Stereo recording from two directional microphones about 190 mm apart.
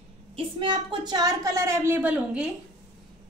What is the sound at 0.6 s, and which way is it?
A woman's voice, 25° right (ahead or behind).